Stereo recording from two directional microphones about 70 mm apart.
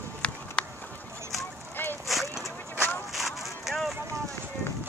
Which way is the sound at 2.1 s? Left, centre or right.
Centre.